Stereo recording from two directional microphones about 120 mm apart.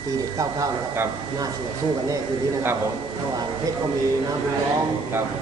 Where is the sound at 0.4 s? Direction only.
25° right (ahead or behind).